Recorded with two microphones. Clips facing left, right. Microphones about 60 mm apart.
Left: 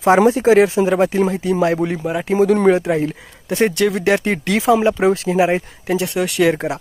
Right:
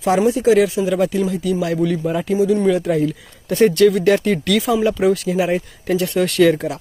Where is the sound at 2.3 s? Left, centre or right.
Left.